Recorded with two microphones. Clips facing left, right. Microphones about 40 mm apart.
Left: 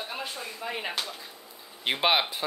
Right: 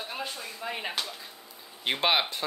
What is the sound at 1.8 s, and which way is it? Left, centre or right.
Speech, centre.